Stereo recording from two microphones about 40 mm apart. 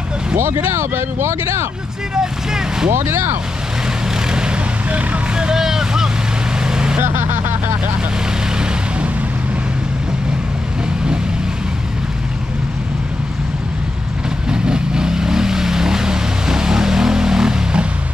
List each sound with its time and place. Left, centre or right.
0.4 s speech: right
2.1 s speech: centre
3.0 s speech: right
4.3 s vehicle: right
4.8 s speech: right
5.3 s vehicle: centre
7.0 s speech: right
14.5 s vehicle: centre